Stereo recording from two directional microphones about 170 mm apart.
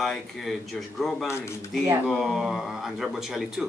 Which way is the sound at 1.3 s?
15° left (ahead or behind).